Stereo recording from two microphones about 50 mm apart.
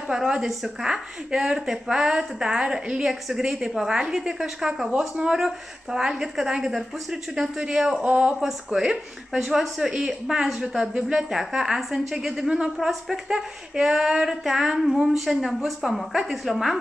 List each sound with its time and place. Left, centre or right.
0.1 s speech: centre
8.0 s speech: right
8.4 s speech: centre